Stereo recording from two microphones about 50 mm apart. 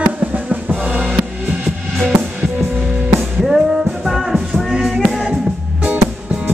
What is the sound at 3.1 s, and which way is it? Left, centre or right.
Music, centre.